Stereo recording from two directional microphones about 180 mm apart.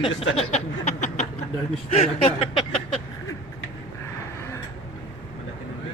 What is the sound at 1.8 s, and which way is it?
Speech, 35° left (ahead or behind).